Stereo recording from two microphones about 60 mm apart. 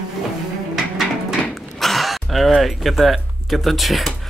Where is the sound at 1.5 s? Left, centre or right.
Centre.